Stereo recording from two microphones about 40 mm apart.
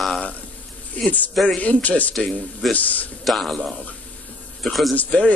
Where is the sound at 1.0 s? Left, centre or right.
Left.